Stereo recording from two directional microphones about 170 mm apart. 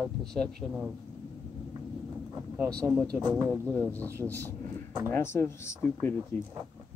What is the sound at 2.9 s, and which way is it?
Speech, centre (ahead or behind).